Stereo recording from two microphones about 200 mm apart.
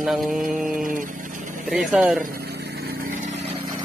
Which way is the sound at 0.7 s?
40° right (ahead or behind).